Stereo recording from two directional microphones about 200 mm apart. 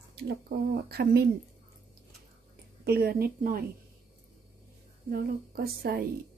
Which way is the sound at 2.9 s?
50° right (ahead or behind).